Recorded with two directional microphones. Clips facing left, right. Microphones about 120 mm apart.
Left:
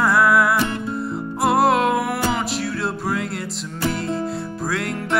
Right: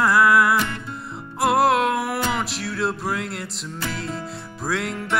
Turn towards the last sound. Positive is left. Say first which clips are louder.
# left 2 dB
turn(degrees=0)  # may be behind; listen again after turning